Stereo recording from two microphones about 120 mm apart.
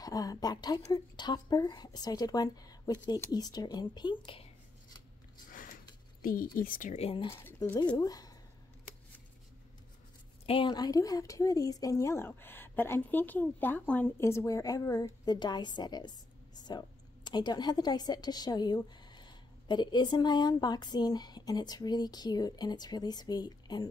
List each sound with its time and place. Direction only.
0.0 s a woman's voice: 30° left (ahead or behind)
6.8 s speech: 75° left (ahead or behind)
7.1 s speech: 50° left (ahead or behind)
7.6 s speech: 35° left (ahead or behind)
10.4 s a woman's voice: 50° left (ahead or behind)
10.7 s speech: 30° left (ahead or behind); by 14.1 s 10° left (ahead or behind)
14.2 s a woman's voice: 25° left (ahead or behind)